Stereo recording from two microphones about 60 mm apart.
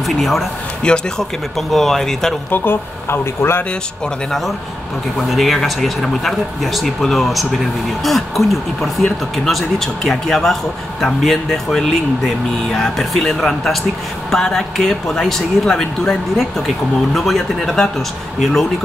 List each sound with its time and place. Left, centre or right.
0.0 s speech: centre
0.8 s speech: centre
1.7 s speech: centre
2.5 s speech: left
5.3 s speech: centre